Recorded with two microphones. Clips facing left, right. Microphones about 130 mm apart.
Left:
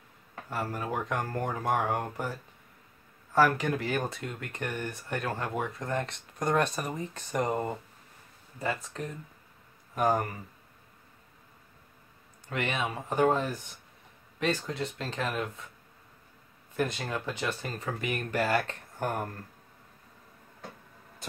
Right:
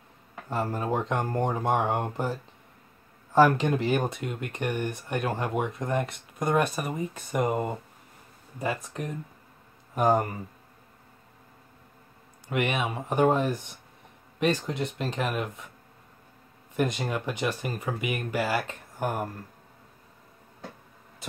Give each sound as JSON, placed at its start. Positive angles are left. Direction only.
{"t": 0.5, "sound": "speech", "side_deg": -25}
{"t": 3.3, "sound": "speech", "side_deg": -20}
{"t": 12.4, "sound": "speech", "side_deg": -15}
{"t": 16.7, "sound": "speech", "side_deg": -20}